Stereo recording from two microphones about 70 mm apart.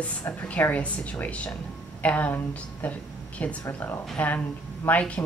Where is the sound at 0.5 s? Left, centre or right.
Left.